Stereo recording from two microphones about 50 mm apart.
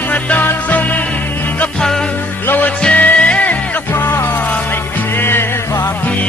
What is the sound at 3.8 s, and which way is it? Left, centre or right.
Music, left.